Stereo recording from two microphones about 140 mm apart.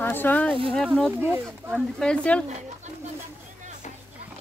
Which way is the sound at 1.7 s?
Centre (ahead or behind).